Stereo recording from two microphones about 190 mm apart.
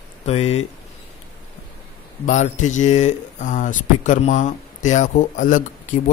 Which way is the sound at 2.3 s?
40° left (ahead or behind).